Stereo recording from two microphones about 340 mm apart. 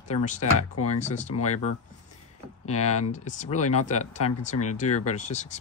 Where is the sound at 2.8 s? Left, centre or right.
Centre.